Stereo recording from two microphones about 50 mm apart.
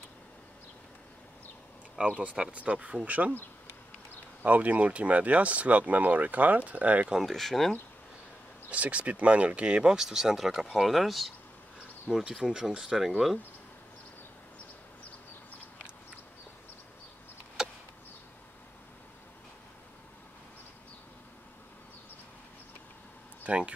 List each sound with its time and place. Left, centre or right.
2.0 s speech: right
4.4 s speech: right
7.2 s speech: centre
8.6 s speech: right; by 11.3 s centre
12.4 s speech: centre
17.6 s a sound: centre
23.4 s a sound: right